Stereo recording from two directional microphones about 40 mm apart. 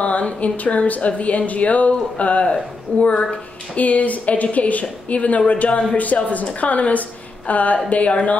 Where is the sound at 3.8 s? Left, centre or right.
Left.